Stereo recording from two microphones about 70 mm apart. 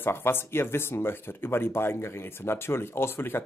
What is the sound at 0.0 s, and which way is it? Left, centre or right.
Speech, left.